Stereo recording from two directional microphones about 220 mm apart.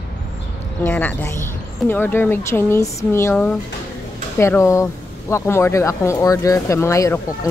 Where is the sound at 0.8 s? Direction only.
10° left (ahead or behind).